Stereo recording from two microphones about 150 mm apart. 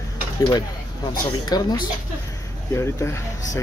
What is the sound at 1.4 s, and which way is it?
Speech, 25° left (ahead or behind).